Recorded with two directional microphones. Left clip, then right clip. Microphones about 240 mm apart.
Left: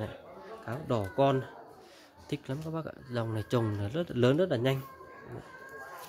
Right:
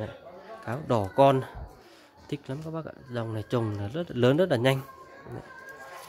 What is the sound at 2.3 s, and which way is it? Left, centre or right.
Speech, centre.